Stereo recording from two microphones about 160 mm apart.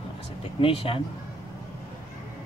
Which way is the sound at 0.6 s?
35° left (ahead or behind).